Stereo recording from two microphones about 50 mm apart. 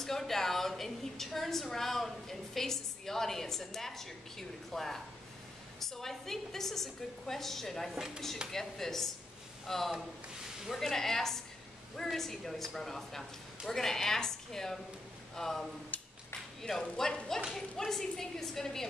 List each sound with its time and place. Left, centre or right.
0.0 s a woman's voice: centre
15.9 s a sound: left
16.8 s a woman's voice: centre